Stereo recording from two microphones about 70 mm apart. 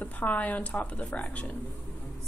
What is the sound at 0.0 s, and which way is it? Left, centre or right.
Speech, left.